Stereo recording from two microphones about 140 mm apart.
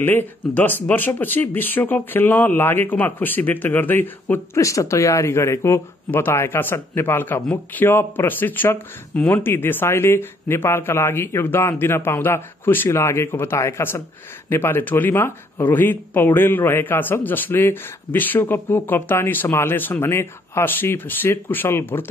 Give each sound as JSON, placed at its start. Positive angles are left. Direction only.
{"t": 0.0, "sound": "speech", "side_deg": 10}